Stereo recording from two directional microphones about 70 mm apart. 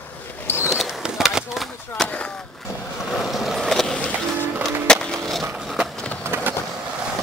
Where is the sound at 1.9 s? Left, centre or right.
Centre.